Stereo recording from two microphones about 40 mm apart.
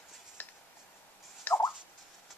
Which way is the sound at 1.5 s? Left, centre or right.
Left.